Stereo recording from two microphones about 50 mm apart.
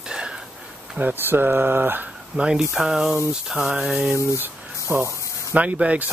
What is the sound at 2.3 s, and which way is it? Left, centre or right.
Speech, centre.